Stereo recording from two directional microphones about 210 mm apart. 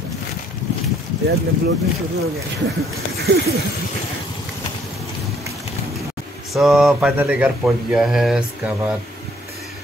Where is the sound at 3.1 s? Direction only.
50° right (ahead or behind).